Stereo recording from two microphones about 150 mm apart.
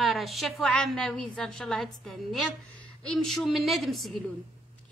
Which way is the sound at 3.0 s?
5° left (ahead or behind).